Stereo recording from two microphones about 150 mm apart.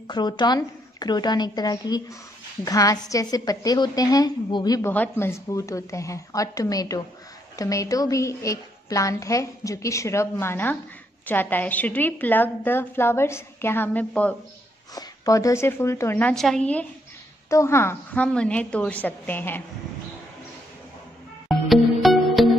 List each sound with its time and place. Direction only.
0.1 s a woman's voice: 30° left (ahead or behind)
4.9 s a woman's voice: 15° left (ahead or behind)
15.0 s a woman's voice: 25° left (ahead or behind); by 16.8 s 5° left (ahead or behind)
17.5 s a woman's voice: 20° left (ahead or behind)
21.5 s music: centre (ahead or behind)